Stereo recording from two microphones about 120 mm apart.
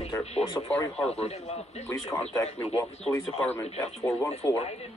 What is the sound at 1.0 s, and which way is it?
Speech, 60° left (ahead or behind).